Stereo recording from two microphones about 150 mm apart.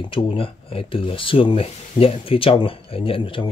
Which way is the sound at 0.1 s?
35° left (ahead or behind).